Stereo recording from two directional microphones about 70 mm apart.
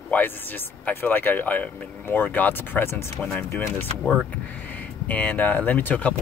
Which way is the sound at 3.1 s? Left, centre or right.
Centre.